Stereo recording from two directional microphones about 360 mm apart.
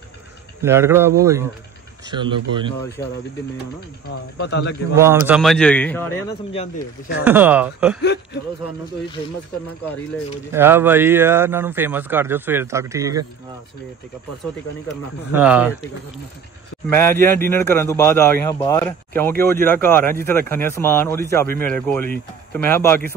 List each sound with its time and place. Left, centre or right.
0.6 s speech: centre
4.4 s speech: left
4.9 s a man's voice: centre
7.2 s a man's voice: centre
8.0 s speech: left
10.5 s speech: centre
14.9 s a man's voice: centre
16.8 s a man's voice: centre